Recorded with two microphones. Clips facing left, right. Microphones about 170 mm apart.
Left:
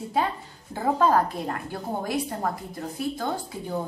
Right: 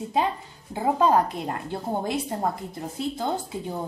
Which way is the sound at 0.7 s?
15° right (ahead or behind).